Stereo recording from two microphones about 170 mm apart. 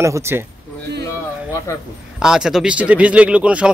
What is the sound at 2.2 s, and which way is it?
Speech, 5° right (ahead or behind).